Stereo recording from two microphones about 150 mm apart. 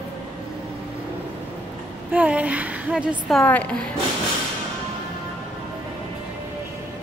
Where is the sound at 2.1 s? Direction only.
10° right (ahead or behind).